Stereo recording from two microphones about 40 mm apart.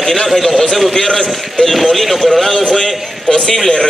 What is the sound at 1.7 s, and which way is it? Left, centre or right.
A man's voice, centre.